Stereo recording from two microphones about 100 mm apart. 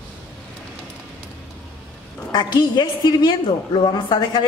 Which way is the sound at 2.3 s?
45° left (ahead or behind).